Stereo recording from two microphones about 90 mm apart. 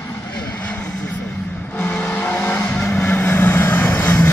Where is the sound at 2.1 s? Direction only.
20° left (ahead or behind).